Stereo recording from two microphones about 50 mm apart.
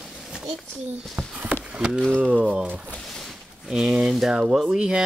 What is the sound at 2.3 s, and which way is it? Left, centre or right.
Speech, right.